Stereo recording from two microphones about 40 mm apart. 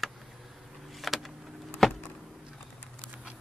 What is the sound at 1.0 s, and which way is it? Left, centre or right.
Vehicle, centre.